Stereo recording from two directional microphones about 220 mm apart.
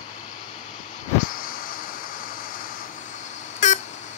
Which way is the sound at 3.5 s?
35° left (ahead or behind).